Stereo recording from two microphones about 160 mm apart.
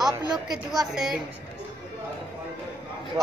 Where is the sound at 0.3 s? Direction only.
Centre (ahead or behind).